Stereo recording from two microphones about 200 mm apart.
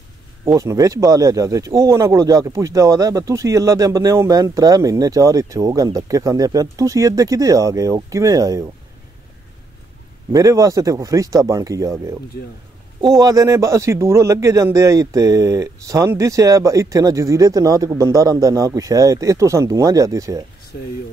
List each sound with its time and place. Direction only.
0.6 s speech: 15° right (ahead or behind)
10.3 s speech: 15° right (ahead or behind)